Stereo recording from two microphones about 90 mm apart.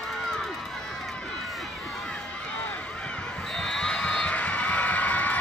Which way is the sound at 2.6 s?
10° left (ahead or behind).